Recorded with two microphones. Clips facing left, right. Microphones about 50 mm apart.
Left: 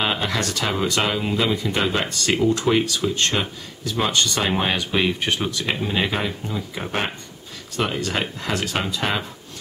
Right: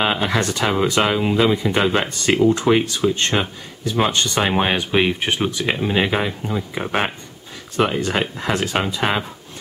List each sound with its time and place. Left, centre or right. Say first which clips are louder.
0.0 s speech: right 4 dB; centre